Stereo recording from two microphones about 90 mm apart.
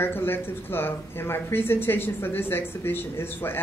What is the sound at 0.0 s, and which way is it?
Speech, 25° left (ahead or behind).